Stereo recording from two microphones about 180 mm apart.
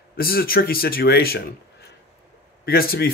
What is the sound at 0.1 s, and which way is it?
Speech, 55° left (ahead or behind).